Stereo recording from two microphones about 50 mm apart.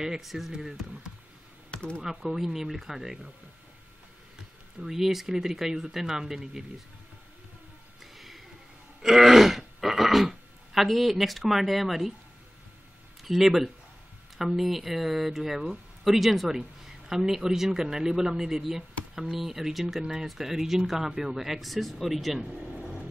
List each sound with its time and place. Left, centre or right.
0.0 s speech: centre
1.7 s computer keyboard: left
2.0 s speech: centre
4.7 s speech: centre
8.0 s a sound: centre
9.0 s throat clearing: centre
13.2 s speech: centre